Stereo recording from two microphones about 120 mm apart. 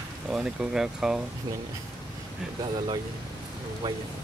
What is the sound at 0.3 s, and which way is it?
Speech, 5° right (ahead or behind).